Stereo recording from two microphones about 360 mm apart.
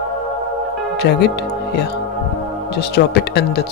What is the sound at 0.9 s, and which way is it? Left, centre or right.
Speech, left.